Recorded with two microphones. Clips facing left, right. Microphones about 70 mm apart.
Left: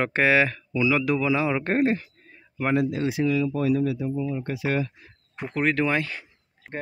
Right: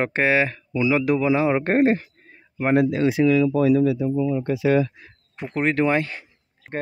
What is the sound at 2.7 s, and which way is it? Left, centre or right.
Speech, right.